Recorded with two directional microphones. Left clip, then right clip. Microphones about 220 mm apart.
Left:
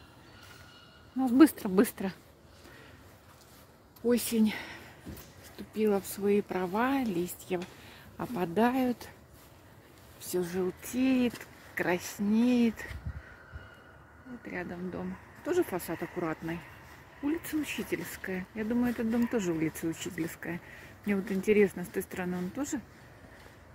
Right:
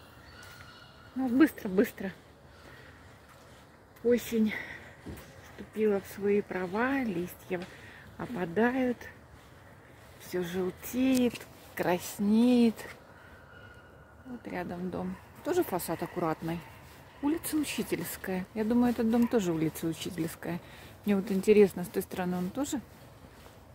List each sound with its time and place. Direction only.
1.2 s speech: 20° left (ahead or behind)
4.1 s speech: 20° left (ahead or behind)
10.3 s speech: 5° left (ahead or behind); by 12.8 s 15° right (ahead or behind)
14.4 s speech: 10° right (ahead or behind)
17.7 s speech: 25° right (ahead or behind)
18.0 s speech: 15° right (ahead or behind)